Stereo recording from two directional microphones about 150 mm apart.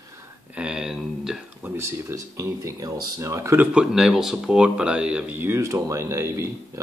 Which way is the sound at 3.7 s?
5° right (ahead or behind).